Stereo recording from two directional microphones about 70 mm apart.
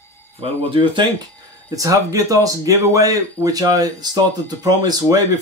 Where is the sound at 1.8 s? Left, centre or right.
Right.